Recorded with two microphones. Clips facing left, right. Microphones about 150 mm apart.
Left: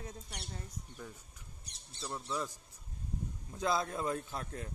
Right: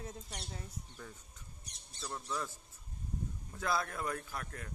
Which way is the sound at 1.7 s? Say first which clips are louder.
Left 2 dB; 25° left (ahead or behind).